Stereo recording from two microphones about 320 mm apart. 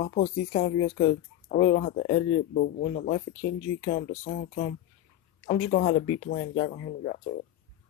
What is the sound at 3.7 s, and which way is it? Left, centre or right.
Speech, left.